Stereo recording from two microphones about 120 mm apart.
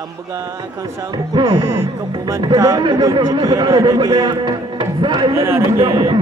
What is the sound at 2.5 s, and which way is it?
Speech, 25° right (ahead or behind).